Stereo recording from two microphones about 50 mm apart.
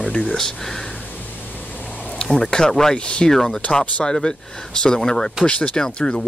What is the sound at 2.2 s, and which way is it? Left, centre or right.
Speech, centre.